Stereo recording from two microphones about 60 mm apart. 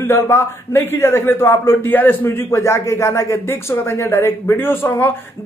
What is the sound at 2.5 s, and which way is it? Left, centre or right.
A man's voice, left.